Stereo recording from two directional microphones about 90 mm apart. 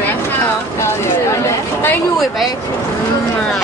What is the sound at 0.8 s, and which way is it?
Speech, 30° left (ahead or behind).